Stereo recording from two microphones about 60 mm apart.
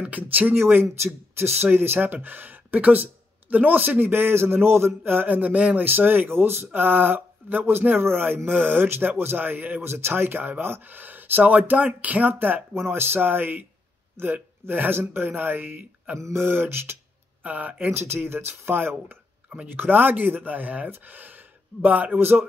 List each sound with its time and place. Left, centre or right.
0.0 s speech: right
5.9 s speech: right
6.7 s speech: right
16.2 s speech: right
16.4 s speech: right
17.4 s speech: right
17.9 s speech: right
22.2 s speech: right